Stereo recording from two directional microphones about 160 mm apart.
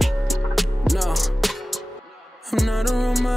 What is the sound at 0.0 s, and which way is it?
Music, centre (ahead or behind).